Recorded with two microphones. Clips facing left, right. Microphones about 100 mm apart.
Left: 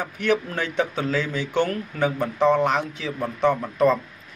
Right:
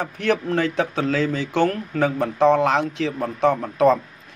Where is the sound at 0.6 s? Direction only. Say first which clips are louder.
Right 3 dB; 45° right (ahead or behind).